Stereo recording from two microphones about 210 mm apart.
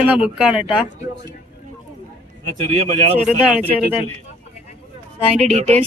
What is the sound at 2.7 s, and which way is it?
Speech, 35° right (ahead or behind).